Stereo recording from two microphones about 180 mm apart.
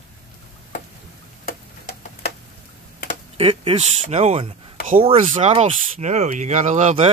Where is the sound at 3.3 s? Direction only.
30° right (ahead or behind).